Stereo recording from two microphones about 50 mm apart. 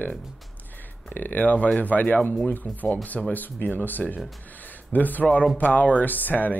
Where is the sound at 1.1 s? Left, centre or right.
Left.